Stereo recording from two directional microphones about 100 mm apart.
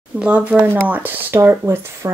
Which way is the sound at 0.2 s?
15° right (ahead or behind).